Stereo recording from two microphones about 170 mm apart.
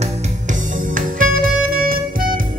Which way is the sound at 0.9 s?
55° right (ahead or behind).